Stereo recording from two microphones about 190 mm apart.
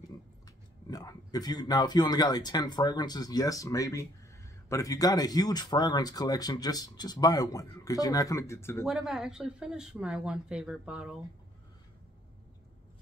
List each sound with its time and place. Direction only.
0.5 s speech: 20° left (ahead or behind)
8.8 s speech: centre (ahead or behind)